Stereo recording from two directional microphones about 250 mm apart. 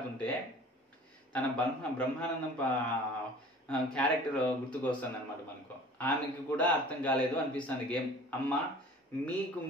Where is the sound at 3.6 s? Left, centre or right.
Centre.